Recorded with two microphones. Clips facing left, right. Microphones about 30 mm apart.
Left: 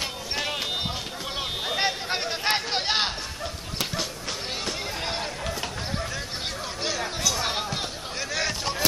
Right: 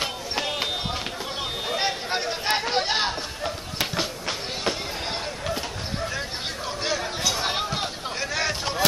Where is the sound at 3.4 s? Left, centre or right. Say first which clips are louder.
Right 4 dB; centre.